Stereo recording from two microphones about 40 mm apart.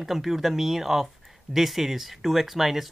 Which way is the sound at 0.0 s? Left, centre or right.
Centre.